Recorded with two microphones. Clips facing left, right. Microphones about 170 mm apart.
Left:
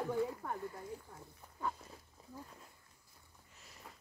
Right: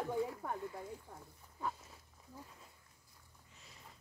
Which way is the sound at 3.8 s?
75° left (ahead or behind).